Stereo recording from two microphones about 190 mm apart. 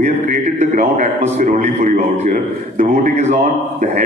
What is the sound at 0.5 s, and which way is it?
A man's voice, 40° right (ahead or behind).